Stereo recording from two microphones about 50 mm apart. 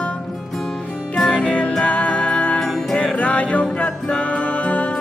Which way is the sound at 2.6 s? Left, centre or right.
Centre.